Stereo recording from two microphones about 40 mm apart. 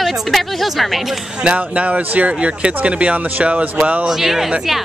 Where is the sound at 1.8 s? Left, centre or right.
Right.